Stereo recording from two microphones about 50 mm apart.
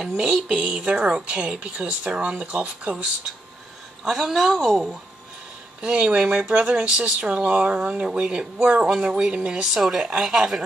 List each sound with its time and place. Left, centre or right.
0.0 s speech: centre
4.0 s a woman's voice: centre
5.8 s a woman's voice: right; by 10.6 s centre